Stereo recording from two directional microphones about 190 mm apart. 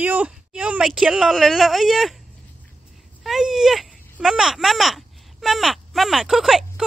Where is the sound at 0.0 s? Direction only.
10° right (ahead or behind).